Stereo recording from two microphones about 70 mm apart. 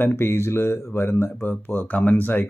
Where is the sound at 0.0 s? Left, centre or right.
Left.